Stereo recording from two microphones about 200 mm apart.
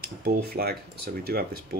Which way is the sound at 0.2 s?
50° right (ahead or behind).